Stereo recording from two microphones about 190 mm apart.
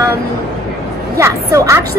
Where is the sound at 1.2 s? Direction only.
15° right (ahead or behind).